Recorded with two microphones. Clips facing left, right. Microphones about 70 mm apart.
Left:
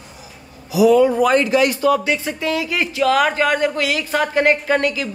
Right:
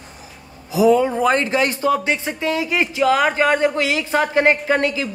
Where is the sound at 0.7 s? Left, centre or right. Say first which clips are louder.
Left 2 dB; right.